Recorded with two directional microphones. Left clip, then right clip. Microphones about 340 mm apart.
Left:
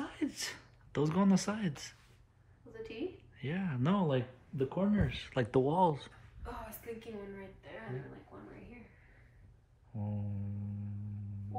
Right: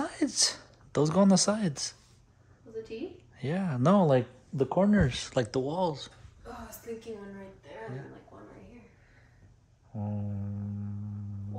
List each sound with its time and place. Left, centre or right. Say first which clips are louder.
0.3 s speech: right 13 dB; centre
3.3 s speech: right 9 dB; centre
5.3 s speech: left 2 dB; centre
9.9 s a sound: right 5 dB; centre